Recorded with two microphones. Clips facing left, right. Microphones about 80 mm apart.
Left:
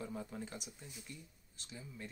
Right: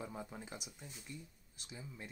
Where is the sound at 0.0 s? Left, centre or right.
Centre.